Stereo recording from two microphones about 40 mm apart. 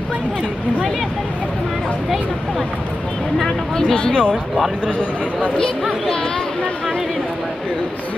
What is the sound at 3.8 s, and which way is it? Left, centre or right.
Speech, left.